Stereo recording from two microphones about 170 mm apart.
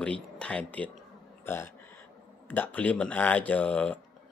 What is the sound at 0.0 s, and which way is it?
A man's voice, 5° left (ahead or behind).